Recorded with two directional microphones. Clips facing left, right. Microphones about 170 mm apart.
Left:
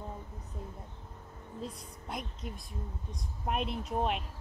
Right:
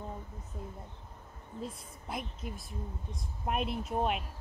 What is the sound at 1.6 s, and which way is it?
Speech, centre (ahead or behind).